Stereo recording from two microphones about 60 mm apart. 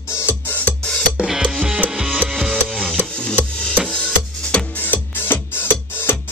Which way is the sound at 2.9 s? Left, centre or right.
Centre.